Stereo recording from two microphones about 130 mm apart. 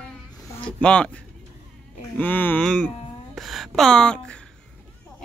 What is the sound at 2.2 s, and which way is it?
Speech, 15° left (ahead or behind).